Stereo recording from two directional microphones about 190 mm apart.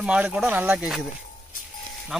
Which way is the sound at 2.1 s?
Centre (ahead or behind).